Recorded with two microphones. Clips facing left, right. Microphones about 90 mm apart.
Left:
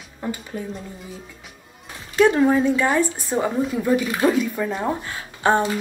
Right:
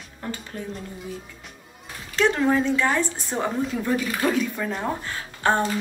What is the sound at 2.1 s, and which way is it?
A woman's voice, 10° left (ahead or behind).